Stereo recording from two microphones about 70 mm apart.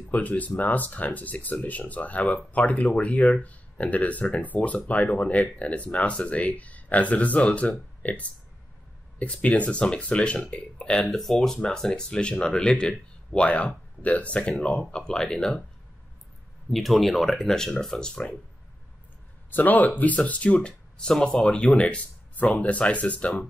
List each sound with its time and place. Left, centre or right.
0.1 s speech: left
11.1 s speech: centre
16.7 s speech: centre
19.5 s speech: left